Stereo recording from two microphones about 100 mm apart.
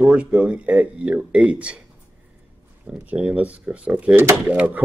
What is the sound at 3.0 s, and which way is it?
Speech, 15° right (ahead or behind).